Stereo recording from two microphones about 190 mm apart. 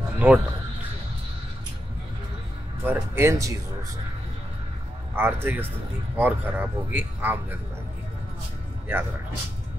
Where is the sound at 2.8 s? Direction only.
10° right (ahead or behind).